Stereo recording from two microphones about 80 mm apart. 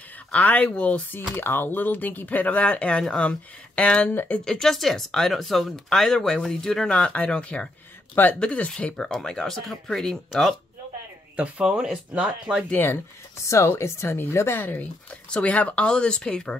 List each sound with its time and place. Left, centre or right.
0.3 s speech: centre
4.5 s speech: centre
11.3 s speech: centre
12.7 s speech: left
15.2 s speech: centre